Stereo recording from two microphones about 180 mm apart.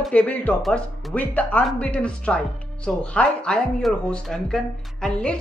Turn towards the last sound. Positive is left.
turn(degrees=5)  # may be behind; listen again after turning